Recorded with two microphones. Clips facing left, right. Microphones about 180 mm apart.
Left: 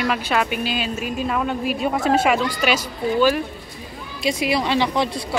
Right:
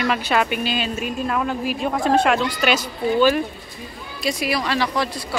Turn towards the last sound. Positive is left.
turn(degrees=20)  # may be behind; listen again after turning